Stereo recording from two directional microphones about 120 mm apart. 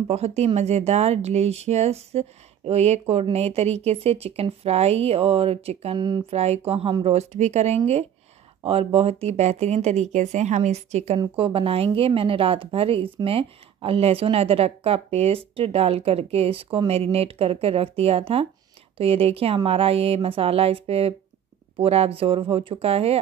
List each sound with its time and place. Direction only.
0.1 s speech: 60° right (ahead or behind)
5.9 s speech: 40° right (ahead or behind)
6.3 s speech: 60° right (ahead or behind)
11.3 s a woman's voice: 50° right (ahead or behind)